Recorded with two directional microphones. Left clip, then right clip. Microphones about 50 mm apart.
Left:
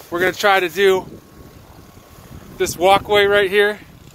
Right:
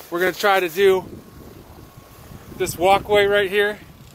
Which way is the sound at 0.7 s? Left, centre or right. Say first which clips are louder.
Left 1 dB; left.